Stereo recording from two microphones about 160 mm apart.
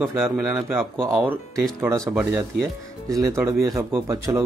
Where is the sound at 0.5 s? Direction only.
15° right (ahead or behind).